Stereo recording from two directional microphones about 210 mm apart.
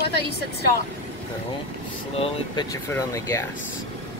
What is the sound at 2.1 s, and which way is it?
Speech, 25° left (ahead or behind).